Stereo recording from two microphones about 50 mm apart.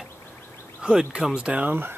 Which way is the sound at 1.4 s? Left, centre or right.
Right.